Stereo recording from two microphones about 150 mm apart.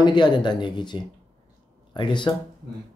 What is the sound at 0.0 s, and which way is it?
Speech, 30° left (ahead or behind).